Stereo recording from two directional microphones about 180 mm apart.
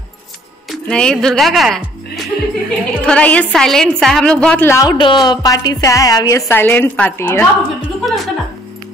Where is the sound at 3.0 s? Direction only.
5° left (ahead or behind).